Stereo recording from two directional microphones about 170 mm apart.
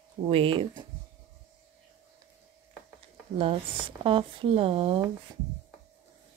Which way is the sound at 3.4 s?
35° right (ahead or behind).